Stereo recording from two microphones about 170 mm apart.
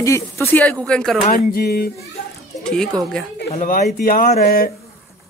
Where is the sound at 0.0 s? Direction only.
15° left (ahead or behind).